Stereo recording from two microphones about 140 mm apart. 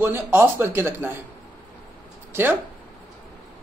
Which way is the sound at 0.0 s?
15° right (ahead or behind).